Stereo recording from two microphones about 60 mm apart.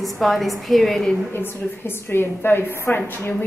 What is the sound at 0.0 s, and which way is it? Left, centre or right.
A man's voice, centre.